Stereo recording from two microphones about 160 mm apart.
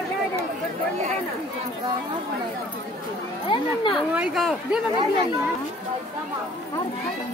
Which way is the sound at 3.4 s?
30° left (ahead or behind).